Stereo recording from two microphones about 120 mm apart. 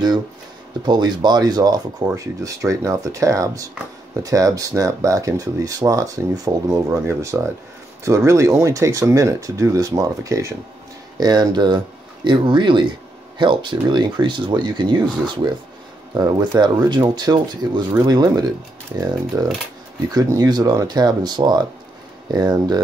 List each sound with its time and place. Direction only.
0.8 s speech: 35° right (ahead or behind)